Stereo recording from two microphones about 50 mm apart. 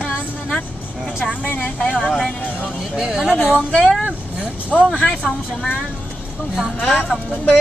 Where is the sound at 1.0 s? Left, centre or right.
Centre.